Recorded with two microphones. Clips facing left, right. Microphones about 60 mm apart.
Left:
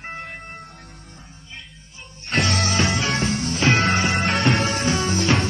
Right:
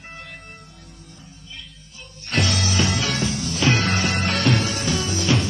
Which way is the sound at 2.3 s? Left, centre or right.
Left.